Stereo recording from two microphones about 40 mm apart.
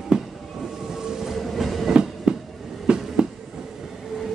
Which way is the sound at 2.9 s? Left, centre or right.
Right.